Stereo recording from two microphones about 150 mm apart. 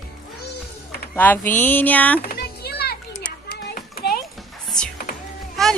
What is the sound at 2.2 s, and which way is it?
Children playing, 90° left.